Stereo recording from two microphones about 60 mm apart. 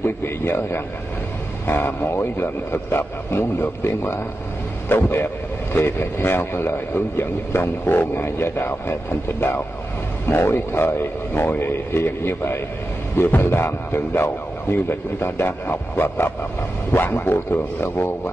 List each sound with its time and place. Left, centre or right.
0.0 s a man's voice: left